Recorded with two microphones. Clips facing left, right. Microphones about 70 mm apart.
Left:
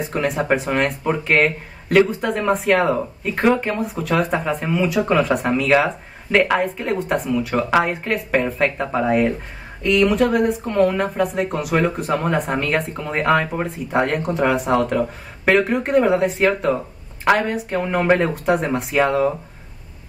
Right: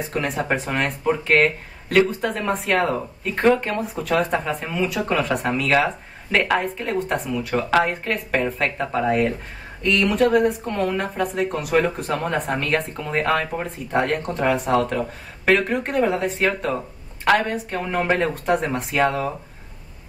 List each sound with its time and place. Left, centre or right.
0.0 s speech: centre